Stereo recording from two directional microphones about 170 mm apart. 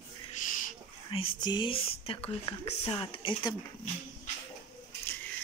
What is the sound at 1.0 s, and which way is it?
Speech, 30° left (ahead or behind).